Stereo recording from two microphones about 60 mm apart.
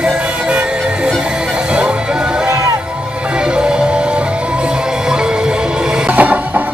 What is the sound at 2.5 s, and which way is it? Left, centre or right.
Music, right.